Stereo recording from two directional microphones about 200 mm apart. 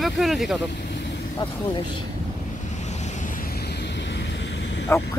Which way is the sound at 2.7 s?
35° left (ahead or behind).